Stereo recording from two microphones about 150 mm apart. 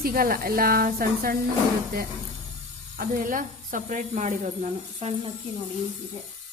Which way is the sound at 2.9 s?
70° right (ahead or behind).